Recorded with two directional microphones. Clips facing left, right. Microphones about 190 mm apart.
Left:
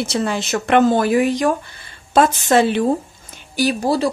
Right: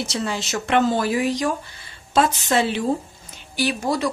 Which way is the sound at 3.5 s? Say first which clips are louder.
Left 5 dB; 35° left (ahead or behind).